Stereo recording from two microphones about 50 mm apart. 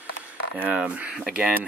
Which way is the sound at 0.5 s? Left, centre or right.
Right.